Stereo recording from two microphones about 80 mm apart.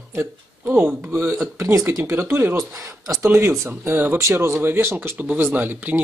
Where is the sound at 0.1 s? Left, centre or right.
Right.